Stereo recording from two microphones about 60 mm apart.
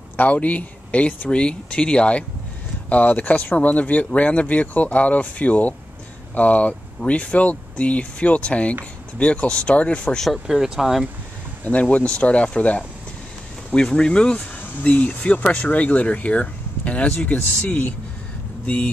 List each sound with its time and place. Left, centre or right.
0.2 s speech: left
10.1 s speech: centre
10.4 s speech: centre
11.6 s speech: left